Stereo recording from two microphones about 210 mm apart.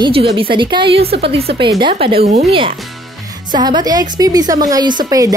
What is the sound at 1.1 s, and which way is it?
Speech, 55° right (ahead or behind).